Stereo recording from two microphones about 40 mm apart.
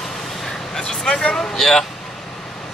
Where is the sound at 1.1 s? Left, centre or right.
Left.